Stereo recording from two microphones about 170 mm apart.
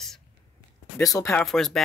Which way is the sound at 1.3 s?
5° left (ahead or behind).